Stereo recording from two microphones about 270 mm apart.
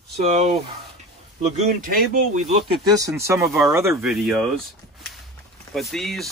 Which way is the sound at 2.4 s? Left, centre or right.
Centre.